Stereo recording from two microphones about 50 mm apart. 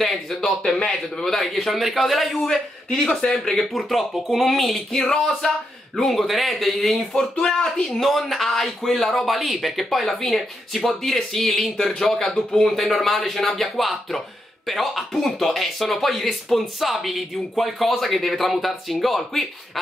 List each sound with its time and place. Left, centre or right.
0.0 s a sound: centre
0.6 s a man's voice: centre
5.9 s a man's voice: centre
7.8 s a man's voice: centre